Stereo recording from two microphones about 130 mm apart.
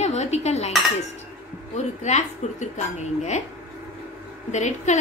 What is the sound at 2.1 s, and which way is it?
A woman's voice, 65° left (ahead or behind).